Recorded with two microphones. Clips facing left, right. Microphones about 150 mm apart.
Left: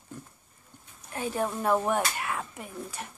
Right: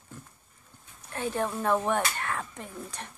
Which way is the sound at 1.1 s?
10° left (ahead or behind).